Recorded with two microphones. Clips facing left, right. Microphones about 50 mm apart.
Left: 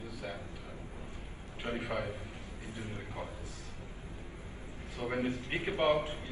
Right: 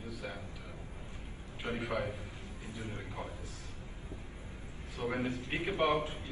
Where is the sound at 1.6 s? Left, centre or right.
Left.